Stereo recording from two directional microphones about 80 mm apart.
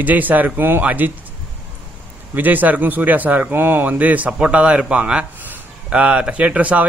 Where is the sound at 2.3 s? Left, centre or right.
Right.